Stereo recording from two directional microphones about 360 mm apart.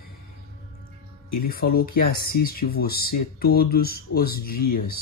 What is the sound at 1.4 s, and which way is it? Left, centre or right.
Speech, left.